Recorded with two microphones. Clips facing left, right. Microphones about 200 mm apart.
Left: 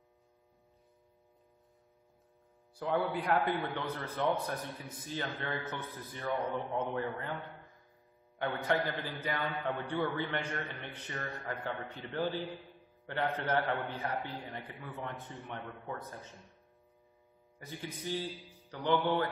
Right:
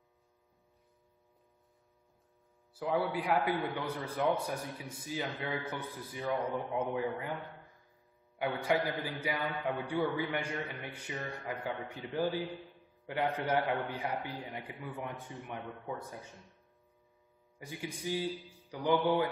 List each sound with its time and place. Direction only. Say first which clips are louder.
2.7 s a man's voice: even; 5° right (ahead or behind)
8.6 s a man's voice: right 1 dB; 10° right (ahead or behind)
17.6 s a man's voice: right 1 dB; 10° right (ahead or behind)